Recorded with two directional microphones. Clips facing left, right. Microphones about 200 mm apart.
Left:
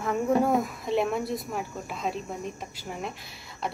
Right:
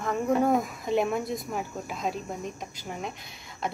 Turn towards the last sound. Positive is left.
turn(degrees=0)  # may be behind; listen again after turning